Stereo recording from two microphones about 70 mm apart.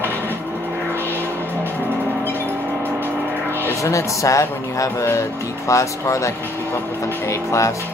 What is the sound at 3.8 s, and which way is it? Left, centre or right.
Speech, left.